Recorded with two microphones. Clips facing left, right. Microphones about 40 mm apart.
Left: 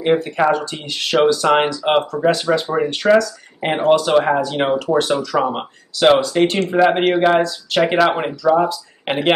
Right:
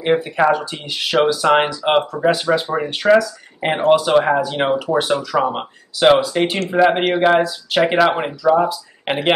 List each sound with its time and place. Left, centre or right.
0.0 s speech: centre